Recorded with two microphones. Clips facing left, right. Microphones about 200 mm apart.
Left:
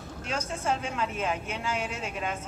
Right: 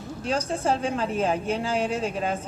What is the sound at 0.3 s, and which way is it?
A woman's voice, 35° right (ahead or behind).